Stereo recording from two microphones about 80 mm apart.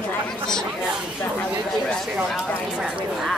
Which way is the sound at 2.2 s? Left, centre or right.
Centre.